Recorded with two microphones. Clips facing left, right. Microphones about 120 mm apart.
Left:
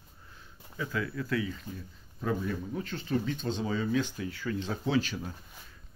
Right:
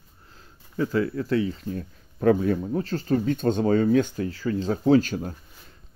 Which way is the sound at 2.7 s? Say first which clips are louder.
Right 8 dB; 40° right (ahead or behind).